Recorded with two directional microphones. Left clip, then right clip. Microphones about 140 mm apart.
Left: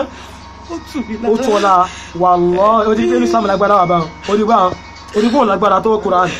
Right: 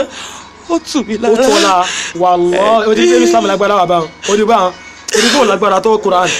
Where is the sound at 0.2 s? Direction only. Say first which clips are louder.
Right 5 dB; 55° right (ahead or behind).